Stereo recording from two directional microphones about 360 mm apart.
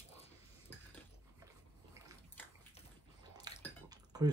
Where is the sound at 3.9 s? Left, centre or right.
Centre.